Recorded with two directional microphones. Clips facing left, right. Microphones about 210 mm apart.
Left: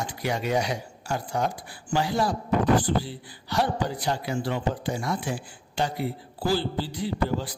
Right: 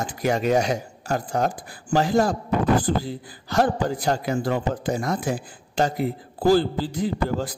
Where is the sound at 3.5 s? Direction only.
50° right (ahead or behind).